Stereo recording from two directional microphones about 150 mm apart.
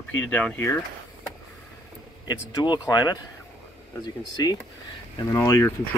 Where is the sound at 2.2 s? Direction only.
30° left (ahead or behind).